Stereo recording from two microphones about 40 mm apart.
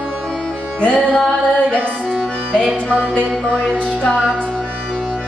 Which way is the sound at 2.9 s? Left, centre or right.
Left.